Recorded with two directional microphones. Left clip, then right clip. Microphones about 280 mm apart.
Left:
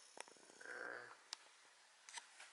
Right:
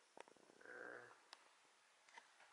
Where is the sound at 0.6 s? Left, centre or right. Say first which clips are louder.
Left 5 dB; centre.